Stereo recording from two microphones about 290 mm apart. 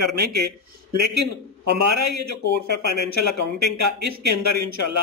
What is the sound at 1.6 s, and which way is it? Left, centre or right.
A man's voice, right.